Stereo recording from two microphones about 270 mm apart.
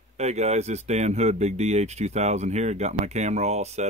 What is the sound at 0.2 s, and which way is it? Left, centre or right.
Speech, right.